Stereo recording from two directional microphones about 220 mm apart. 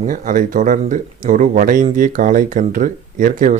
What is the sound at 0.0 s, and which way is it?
Speech, 40° right (ahead or behind).